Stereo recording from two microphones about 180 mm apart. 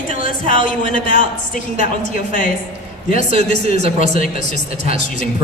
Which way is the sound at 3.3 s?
35° right (ahead or behind).